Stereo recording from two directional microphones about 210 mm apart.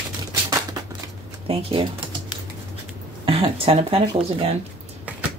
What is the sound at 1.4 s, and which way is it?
Speech, 25° right (ahead or behind).